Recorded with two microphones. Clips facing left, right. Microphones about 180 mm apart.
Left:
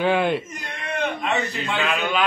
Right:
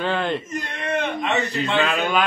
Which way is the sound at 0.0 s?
10° left (ahead or behind).